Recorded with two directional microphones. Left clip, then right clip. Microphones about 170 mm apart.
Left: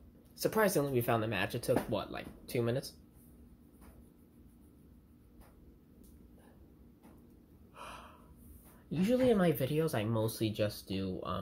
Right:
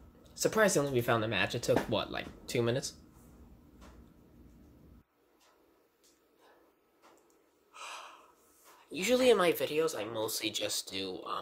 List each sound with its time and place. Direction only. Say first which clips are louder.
0.4 s speech: right 3 dB; 5° left (ahead or behind)
7.7 s gasp: right 4 dB; 5° right (ahead or behind)
9.0 s speech: right 4 dB; 40° right (ahead or behind)
9.4 s speech: right 3 dB; 20° right (ahead or behind)
9.7 s speech: right 2 dB; 5° right (ahead or behind)
10.5 s speech: right 1 dB; 35° right (ahead or behind)